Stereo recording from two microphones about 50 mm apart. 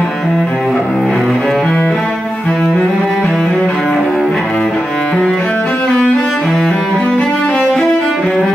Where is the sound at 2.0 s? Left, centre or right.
Left.